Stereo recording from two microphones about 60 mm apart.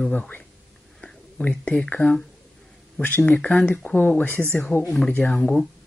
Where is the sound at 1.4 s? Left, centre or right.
Centre.